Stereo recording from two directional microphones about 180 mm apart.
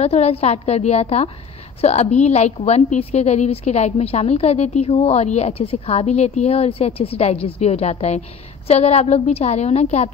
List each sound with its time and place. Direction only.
0.0 s a woman's voice: 35° left (ahead or behind)